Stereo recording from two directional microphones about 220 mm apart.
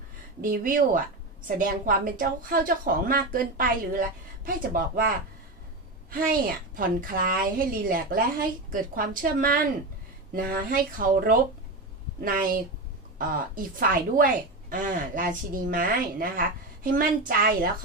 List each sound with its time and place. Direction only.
0.4 s a woman's voice: 40° right (ahead or behind)
13.6 s a woman's voice: 40° right (ahead or behind)